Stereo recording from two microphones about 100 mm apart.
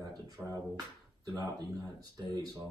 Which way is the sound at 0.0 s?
40° right (ahead or behind).